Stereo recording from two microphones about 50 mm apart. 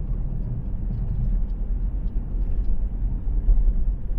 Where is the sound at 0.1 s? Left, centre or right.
Centre.